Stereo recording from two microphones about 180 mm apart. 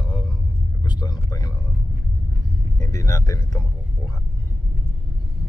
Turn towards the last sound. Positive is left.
turn(degrees=20)  # may be behind; listen again after turning